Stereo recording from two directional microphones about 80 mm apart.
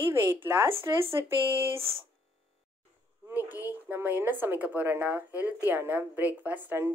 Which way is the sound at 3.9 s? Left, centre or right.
Right.